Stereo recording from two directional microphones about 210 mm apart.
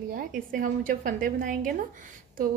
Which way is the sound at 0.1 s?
40° right (ahead or behind).